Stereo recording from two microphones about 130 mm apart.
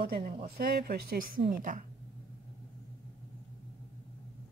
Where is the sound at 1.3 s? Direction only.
90° right.